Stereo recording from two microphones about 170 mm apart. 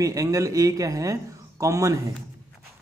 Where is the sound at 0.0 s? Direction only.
20° right (ahead or behind).